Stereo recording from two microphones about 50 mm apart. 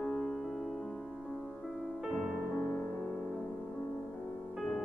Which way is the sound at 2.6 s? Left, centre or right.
Left.